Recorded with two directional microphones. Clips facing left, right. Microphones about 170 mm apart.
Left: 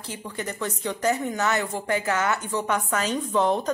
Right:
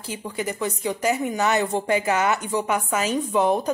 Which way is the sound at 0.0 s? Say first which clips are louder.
Right 4 dB; 10° right (ahead or behind).